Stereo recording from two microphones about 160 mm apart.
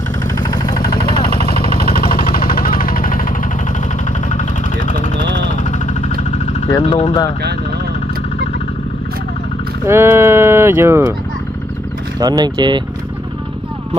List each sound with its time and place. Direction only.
0.4 s vehicle: 25° left (ahead or behind)
2.0 s vehicle: 70° left (ahead or behind)
4.3 s vehicle: 55° left (ahead or behind)
6.9 s speech: 40° left (ahead or behind)
9.8 s speech: 15° right (ahead or behind)
12.2 s speech: 25° right (ahead or behind)